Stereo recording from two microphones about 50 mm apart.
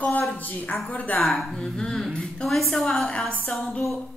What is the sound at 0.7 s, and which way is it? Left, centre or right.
Speech, left.